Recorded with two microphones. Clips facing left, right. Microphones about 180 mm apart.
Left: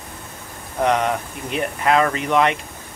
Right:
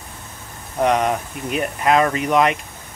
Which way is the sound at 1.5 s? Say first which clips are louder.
Right 1 dB; 15° right (ahead or behind).